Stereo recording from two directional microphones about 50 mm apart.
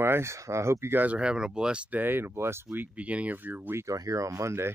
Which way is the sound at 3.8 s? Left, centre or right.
Right.